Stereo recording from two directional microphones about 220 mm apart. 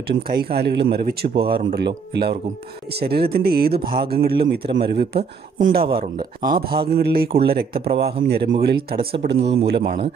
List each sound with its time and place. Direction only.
0.0 s speech: 45° right (ahead or behind)
6.1 s speech: 20° right (ahead or behind)
6.9 s speech: 45° right (ahead or behind)